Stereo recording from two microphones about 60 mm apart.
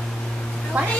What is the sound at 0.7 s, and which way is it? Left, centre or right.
Speech, right.